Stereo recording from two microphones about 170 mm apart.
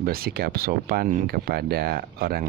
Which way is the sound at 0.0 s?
65° right (ahead or behind).